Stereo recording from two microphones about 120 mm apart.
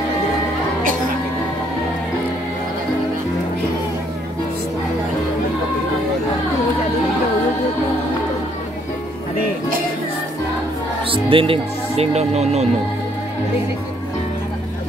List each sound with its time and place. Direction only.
11.1 s speech: 50° right (ahead or behind); by 12.6 s 65° right (ahead or behind)